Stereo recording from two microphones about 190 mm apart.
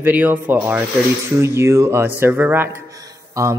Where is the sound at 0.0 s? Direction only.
10° right (ahead or behind).